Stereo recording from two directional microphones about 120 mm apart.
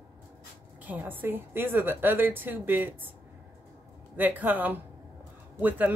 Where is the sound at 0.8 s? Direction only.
15° right (ahead or behind).